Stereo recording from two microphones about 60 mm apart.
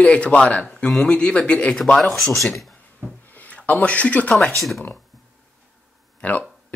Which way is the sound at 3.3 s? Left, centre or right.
Left.